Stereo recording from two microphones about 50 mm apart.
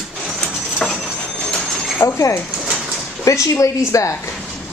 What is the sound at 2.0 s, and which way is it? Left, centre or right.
Speech, left.